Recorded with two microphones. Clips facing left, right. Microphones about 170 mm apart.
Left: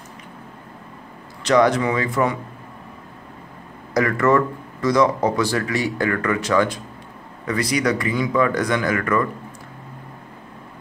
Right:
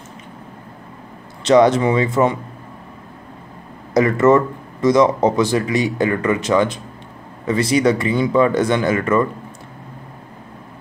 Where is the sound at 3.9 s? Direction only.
25° right (ahead or behind).